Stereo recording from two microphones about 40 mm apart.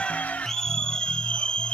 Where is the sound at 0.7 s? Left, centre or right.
Left.